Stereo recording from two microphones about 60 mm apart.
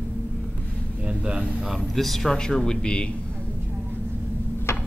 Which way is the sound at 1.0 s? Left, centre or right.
Centre.